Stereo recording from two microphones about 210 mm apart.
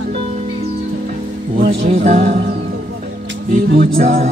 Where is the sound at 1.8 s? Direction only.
30° right (ahead or behind).